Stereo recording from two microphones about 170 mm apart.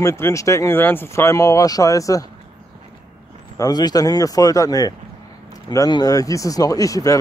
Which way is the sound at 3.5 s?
20° left (ahead or behind).